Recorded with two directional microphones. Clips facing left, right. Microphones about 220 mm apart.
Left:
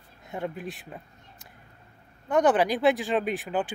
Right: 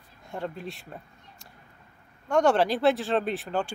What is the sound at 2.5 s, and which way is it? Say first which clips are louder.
Speech: even; 15° left (ahead or behind).